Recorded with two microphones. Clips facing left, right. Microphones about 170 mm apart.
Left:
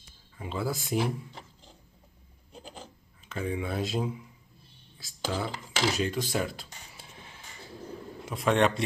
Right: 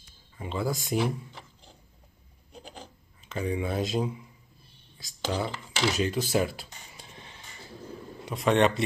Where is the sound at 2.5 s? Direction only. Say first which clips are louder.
Even; centre (ahead or behind).